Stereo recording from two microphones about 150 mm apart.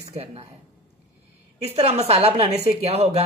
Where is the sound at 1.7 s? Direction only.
45° right (ahead or behind).